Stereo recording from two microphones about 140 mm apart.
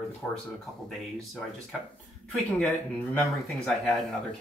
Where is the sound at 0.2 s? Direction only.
5° left (ahead or behind).